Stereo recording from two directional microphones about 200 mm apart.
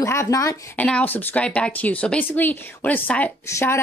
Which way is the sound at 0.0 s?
15° left (ahead or behind).